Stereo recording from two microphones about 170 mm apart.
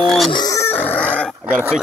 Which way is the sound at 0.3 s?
20° left (ahead or behind).